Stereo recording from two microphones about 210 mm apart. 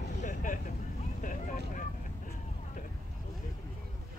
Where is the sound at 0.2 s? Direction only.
40° left (ahead or behind).